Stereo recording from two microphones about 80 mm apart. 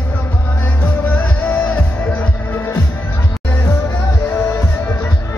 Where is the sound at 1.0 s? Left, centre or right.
Left.